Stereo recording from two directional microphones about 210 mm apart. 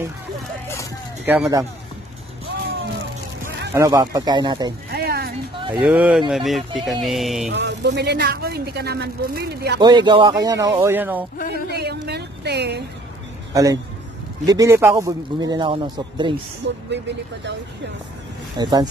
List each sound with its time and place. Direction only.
1.2 s a man's voice: 10° right (ahead or behind)
3.7 s a man's voice: 15° right (ahead or behind)
4.9 s a sound: 45° right (ahead or behind)
5.8 s speech: 5° right (ahead or behind)
7.5 s speech: 55° right (ahead or behind)
9.8 s a man's voice: 20° right (ahead or behind)
11.3 s speech: 50° left (ahead or behind)
11.7 s a sound: 50° right (ahead or behind)
13.5 s a man's voice: 15° right (ahead or behind)
18.6 s speech: 20° right (ahead or behind)